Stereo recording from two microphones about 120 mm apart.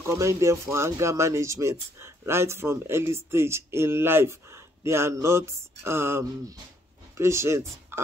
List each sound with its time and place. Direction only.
0.0 s speech: 20° right (ahead or behind)